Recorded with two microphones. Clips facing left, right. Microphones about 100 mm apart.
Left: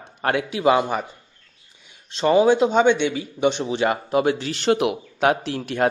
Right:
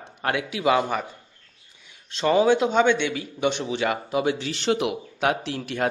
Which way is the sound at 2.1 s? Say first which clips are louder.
Left 3 dB; 25° left (ahead or behind).